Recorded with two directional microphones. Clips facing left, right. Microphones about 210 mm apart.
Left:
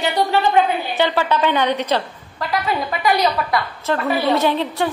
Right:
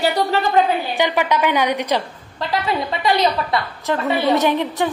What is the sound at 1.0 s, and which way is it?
A woman's voice, 15° right (ahead or behind).